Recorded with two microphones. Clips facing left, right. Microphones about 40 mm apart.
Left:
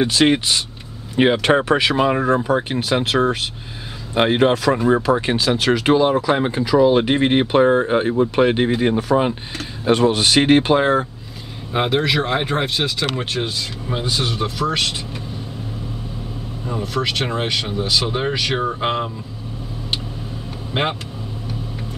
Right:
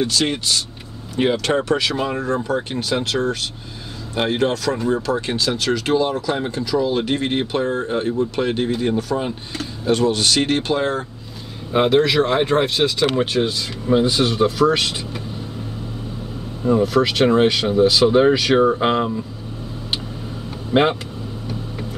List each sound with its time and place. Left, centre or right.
0.0 s speech: left
11.7 s speech: centre
16.6 s speech: centre
20.7 s speech: centre